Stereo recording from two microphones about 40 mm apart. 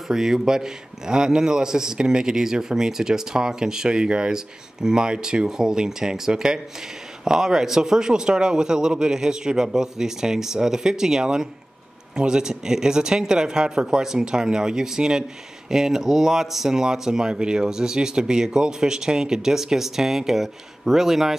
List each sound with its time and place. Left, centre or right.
0.1 s speech: centre